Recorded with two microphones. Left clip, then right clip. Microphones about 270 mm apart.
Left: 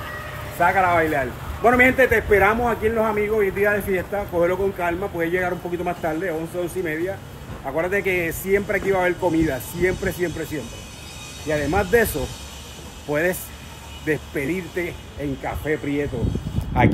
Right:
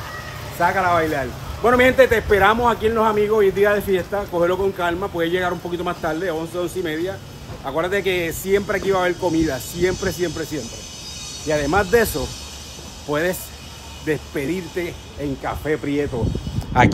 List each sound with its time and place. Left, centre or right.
0.6 s a man's voice: centre
11.4 s a man's voice: centre
13.1 s a man's voice: centre
16.8 s speech: right